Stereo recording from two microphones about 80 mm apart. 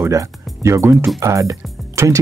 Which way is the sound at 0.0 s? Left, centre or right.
Right.